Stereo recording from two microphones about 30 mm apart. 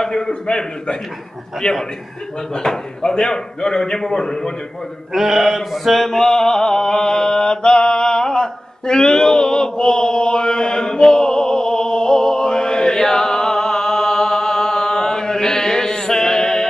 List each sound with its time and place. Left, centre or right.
0.0 s a man's voice: left
2.5 s speech: left
5.1 s a man's voice: centre
6.0 s a sound: centre